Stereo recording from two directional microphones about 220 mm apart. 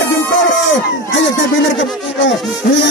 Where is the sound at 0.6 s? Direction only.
60° left (ahead or behind).